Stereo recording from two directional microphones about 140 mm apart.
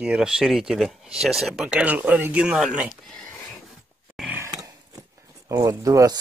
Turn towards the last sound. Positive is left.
turn(degrees=-25)  # may be behind; listen again after turning